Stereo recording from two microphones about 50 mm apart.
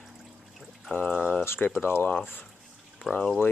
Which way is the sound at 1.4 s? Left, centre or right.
Left.